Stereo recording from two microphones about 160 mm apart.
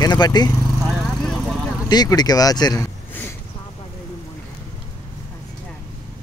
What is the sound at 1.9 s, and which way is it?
Speech, 25° left (ahead or behind).